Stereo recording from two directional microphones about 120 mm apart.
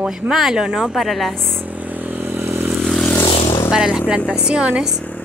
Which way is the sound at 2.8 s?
Centre (ahead or behind).